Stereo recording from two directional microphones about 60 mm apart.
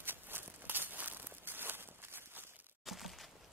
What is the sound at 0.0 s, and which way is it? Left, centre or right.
Walk, right.